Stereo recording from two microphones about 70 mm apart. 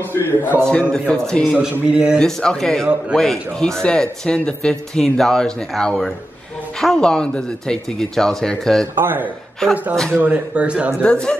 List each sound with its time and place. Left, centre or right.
0.1 s a man's voice: left
0.7 s speech: centre
1.5 s speech: centre
2.1 s speech: centre
8.9 s speech: right
9.6 s speech: centre
10.1 s speech: centre
11.0 s speech: centre